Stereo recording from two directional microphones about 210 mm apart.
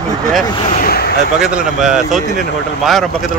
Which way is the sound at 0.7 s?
45° left (ahead or behind).